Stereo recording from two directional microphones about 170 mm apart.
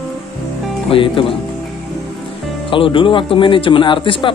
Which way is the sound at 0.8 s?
30° left (ahead or behind).